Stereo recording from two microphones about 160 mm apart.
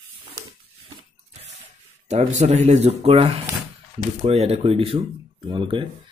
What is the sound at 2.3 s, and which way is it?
Speech, 45° right (ahead or behind).